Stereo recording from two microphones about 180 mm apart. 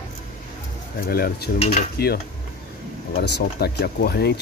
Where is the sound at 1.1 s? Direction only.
55° left (ahead or behind).